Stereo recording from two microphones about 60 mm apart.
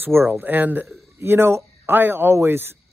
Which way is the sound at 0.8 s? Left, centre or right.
Right.